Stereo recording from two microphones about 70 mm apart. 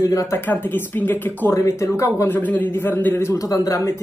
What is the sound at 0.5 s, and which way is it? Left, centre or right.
Speech, left.